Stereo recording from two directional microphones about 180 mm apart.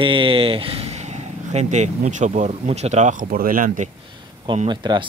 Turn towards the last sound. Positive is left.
turn(degrees=-25)  # may be behind; listen again after turning